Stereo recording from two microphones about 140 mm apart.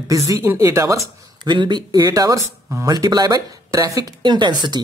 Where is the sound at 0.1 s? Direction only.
20° right (ahead or behind).